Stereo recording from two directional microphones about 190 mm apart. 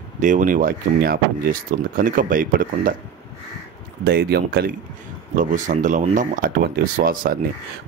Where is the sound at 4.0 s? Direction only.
55° right (ahead or behind).